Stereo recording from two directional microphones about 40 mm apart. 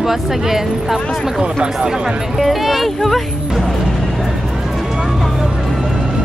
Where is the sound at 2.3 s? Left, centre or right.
Centre.